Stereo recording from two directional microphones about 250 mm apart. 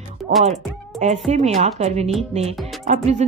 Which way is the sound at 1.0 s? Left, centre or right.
Right.